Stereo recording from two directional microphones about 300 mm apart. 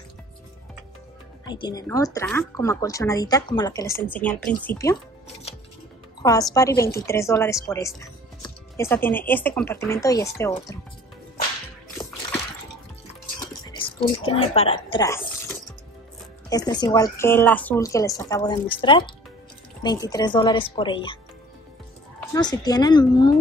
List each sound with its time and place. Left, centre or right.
1.4 s a woman's voice: centre
6.2 s a woman's voice: centre
13.8 s a woman's voice: centre
22.3 s a woman's voice: centre